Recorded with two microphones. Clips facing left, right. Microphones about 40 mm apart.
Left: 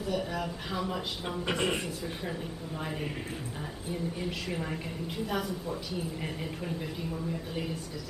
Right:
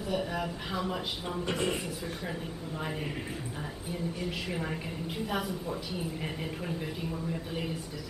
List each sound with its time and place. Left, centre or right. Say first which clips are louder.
0.1 s a woman's voice: right 1 dB; centre
1.5 s a man's voice: left 2 dB; centre
3.9 s a woman's voice: left 1 dB; centre